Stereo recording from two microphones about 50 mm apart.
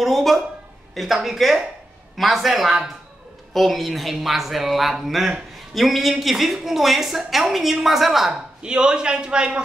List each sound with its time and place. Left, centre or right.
0.0 s a woman's voice: centre
8.6 s a man's voice: centre